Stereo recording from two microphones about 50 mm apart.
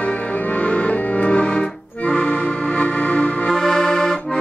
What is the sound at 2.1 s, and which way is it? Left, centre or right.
Accordion, left.